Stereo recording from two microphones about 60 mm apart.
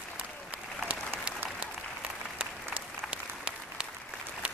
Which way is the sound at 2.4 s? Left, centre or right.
Centre.